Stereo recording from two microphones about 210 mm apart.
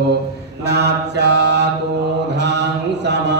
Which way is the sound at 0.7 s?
55° right (ahead or behind).